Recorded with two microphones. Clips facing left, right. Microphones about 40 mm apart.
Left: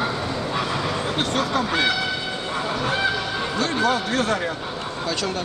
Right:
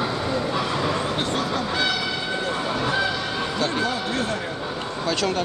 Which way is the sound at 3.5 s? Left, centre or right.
Centre.